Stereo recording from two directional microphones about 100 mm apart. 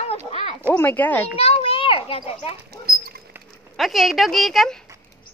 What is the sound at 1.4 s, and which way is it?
A child's voice, 85° left.